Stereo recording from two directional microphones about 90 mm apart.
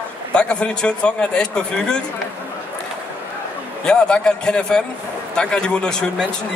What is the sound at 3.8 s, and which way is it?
Speech, 10° left (ahead or behind).